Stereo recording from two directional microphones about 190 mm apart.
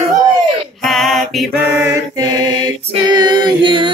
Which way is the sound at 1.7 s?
15° right (ahead or behind).